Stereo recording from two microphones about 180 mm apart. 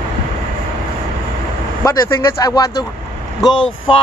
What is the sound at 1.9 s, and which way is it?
Speech, 20° left (ahead or behind).